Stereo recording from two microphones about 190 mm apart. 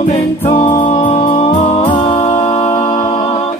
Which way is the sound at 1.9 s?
25° left (ahead or behind).